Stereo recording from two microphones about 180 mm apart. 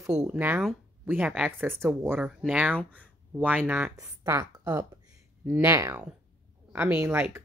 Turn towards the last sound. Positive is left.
turn(degrees=-10)  # may be behind; listen again after turning